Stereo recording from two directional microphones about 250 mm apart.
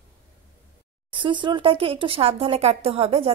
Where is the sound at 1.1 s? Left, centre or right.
Centre.